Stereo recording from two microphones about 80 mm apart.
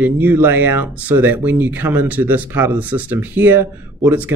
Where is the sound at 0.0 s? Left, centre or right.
Right.